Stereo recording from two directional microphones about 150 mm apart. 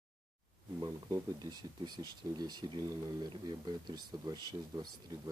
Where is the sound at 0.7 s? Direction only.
25° right (ahead or behind).